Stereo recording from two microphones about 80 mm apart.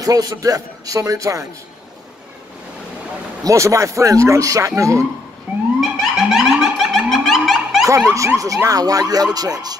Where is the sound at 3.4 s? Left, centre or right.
Right.